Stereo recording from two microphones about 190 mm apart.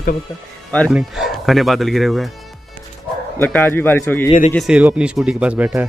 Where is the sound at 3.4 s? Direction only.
5° left (ahead or behind).